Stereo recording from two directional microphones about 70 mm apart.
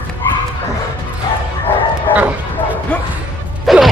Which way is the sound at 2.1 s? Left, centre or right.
Right.